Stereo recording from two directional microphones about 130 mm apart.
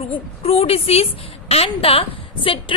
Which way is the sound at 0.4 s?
50° left (ahead or behind).